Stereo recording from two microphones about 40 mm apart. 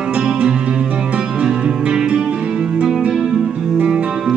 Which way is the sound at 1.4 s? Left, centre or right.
Right.